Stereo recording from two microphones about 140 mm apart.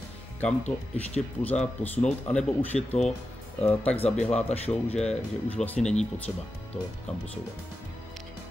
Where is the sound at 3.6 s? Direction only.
10° left (ahead or behind).